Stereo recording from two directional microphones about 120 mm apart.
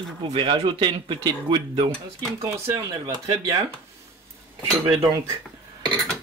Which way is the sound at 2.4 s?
25° right (ahead or behind).